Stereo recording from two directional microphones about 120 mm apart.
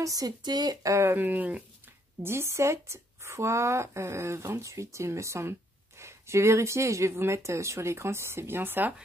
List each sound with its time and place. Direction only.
0.0 s speech: 30° right (ahead or behind)